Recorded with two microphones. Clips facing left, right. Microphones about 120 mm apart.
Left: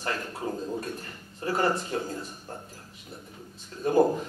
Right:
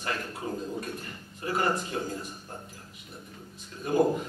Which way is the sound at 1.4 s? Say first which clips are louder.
Left 2 dB; 35° left (ahead or behind).